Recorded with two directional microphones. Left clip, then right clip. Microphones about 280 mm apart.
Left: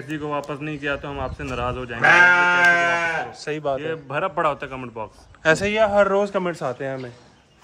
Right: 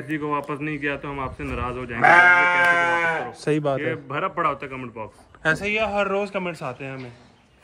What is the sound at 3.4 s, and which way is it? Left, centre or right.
Speech, right.